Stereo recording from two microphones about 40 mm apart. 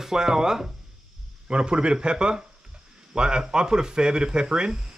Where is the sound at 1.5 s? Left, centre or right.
Right.